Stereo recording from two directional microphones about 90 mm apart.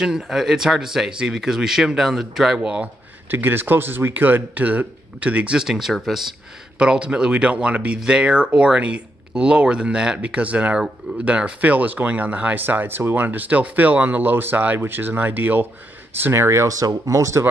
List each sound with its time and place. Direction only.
0.0 s speech: 5° right (ahead or behind)
3.3 s speech: 20° right (ahead or behind); by 6.2 s centre (ahead or behind)
6.8 s speech: 10° right (ahead or behind); by 17.5 s 35° right (ahead or behind)